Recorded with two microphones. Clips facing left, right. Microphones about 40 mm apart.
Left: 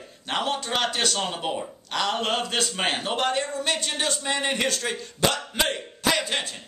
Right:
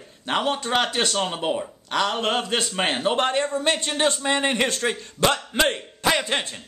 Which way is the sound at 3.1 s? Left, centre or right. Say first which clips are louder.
Right 3 dB; right.